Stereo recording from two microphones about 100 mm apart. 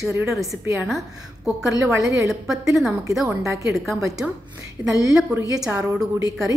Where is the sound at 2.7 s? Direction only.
Centre (ahead or behind).